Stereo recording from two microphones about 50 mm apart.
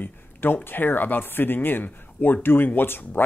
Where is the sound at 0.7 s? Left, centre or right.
Left.